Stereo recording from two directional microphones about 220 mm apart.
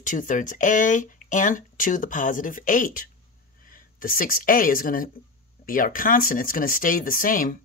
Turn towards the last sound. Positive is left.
turn(degrees=40)  # may be behind; listen again after turning